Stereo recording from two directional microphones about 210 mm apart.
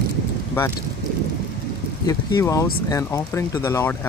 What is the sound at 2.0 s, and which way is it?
Speech, 15° left (ahead or behind).